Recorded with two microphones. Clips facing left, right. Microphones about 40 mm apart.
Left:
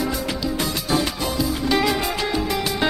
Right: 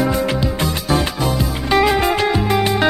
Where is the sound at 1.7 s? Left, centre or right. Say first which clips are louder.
Right 8 dB; right.